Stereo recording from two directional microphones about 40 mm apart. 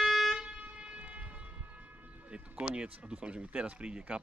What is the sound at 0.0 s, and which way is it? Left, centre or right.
Vehicle horn, centre.